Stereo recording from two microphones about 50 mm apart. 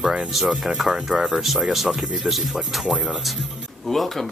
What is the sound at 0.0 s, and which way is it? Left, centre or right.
Speech, centre.